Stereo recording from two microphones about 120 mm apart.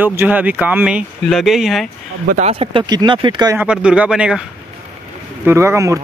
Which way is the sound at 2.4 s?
55° right (ahead or behind).